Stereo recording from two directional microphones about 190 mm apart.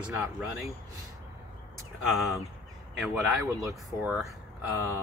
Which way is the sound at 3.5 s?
Centre (ahead or behind).